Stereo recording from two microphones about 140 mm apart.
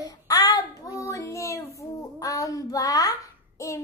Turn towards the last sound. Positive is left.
turn(degrees=20)  # may be behind; listen again after turning